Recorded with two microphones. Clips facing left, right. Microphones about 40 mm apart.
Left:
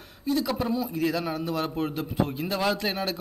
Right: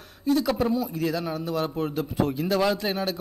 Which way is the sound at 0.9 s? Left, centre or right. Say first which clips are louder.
Even; left.